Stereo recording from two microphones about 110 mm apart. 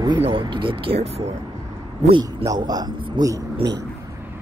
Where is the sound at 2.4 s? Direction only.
35° right (ahead or behind).